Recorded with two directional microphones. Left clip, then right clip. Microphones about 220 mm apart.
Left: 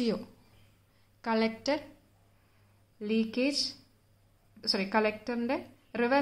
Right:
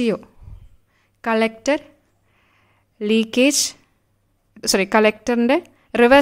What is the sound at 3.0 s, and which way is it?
Speech, 50° right (ahead or behind).